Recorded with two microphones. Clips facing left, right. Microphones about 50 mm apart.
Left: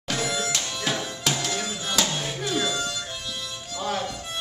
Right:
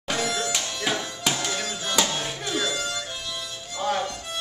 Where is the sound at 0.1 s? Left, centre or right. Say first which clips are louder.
Right 1 dB; centre.